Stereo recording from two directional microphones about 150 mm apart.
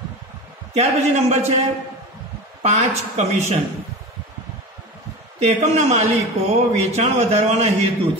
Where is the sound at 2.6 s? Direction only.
50° right (ahead or behind).